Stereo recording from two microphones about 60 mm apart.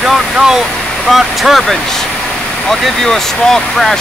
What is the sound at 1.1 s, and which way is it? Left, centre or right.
Speech, centre.